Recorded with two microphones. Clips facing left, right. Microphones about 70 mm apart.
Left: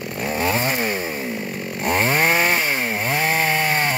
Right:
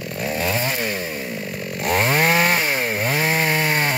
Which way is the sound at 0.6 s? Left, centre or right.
Left.